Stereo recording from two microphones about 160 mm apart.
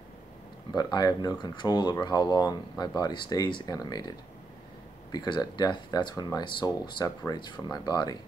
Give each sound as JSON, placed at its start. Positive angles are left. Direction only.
{"t": 0.7, "sound": "speech", "side_deg": 25}
{"t": 5.1, "sound": "speech", "side_deg": 25}